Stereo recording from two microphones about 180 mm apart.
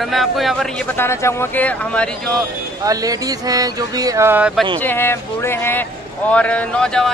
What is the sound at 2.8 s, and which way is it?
Speech, 20° right (ahead or behind).